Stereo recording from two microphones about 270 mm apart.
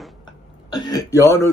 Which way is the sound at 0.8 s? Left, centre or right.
Centre.